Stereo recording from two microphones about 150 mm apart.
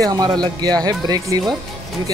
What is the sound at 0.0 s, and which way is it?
Speech, 25° right (ahead or behind).